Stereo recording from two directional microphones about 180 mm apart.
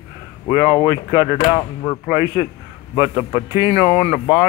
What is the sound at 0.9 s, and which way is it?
A man's voice, 15° right (ahead or behind).